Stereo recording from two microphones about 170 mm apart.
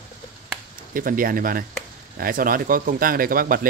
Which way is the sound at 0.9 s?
55° right (ahead or behind).